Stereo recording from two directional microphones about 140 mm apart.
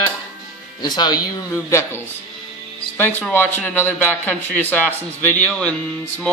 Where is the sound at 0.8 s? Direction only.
30° left (ahead or behind).